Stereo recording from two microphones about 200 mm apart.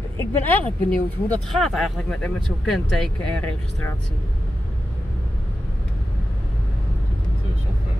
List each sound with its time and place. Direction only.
0.2 s speech: 10° left (ahead or behind)